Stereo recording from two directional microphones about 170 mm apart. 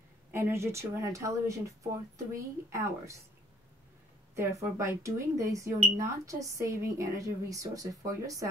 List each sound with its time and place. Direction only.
0.3 s speech: 15° right (ahead or behind)
4.4 s speech: 15° right (ahead or behind)